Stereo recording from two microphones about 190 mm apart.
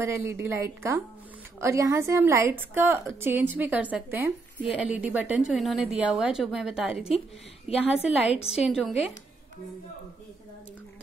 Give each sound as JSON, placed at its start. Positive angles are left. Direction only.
{"t": 0.0, "sound": "a woman's voice", "side_deg": -15}
{"t": 7.7, "sound": "a woman's voice", "side_deg": 30}
{"t": 8.5, "sound": "a woman's voice", "side_deg": 0}